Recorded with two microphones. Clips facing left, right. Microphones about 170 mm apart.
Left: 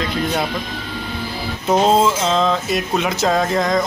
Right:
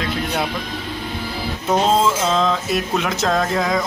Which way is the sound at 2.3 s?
Centre (ahead or behind).